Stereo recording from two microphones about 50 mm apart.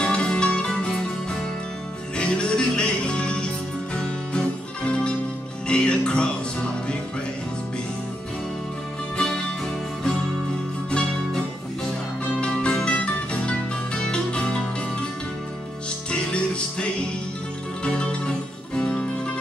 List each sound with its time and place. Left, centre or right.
0.0 s music: centre
2.1 s music: centre
10.9 s music: centre
16.1 s music: left
17.8 s music: centre